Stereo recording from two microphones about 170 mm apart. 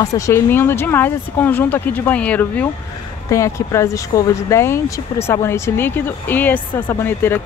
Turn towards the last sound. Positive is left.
turn(degrees=15)  # may be behind; listen again after turning